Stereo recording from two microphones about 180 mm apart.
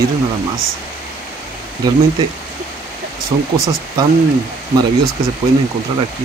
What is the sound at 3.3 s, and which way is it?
Speech, 25° right (ahead or behind).